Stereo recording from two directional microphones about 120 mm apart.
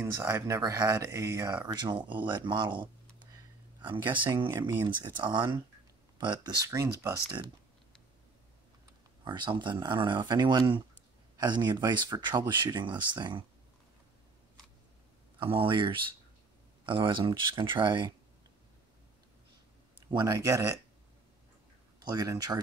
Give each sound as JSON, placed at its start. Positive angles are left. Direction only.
{"t": 0.0, "sound": "speech", "side_deg": -20}
{"t": 1.7, "sound": "speech", "side_deg": -40}
{"t": 4.1, "sound": "speech", "side_deg": -40}
{"t": 4.5, "sound": "speech", "side_deg": -25}
{"t": 5.1, "sound": "speech", "side_deg": -40}
{"t": 6.7, "sound": "speech", "side_deg": -25}
{"t": 9.2, "sound": "speech", "side_deg": -40}
{"t": 15.3, "sound": "speech", "side_deg": -45}
{"t": 20.2, "sound": "speech", "side_deg": -25}
{"t": 22.1, "sound": "speech", "side_deg": -30}